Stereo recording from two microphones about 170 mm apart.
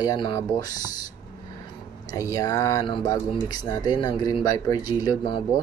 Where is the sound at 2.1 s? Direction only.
20° left (ahead or behind).